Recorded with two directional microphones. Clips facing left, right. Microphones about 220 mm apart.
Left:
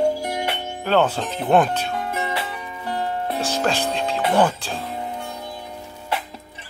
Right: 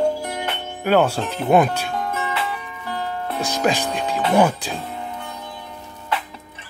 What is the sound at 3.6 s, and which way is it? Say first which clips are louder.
Speech: right 4 dB; 5° right (ahead or behind).